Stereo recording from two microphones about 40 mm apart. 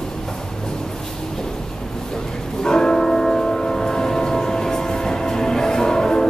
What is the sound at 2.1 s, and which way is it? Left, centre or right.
Church bell, centre.